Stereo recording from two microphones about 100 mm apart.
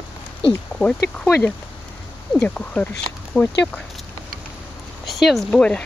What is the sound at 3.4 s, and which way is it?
Speech, 25° left (ahead or behind).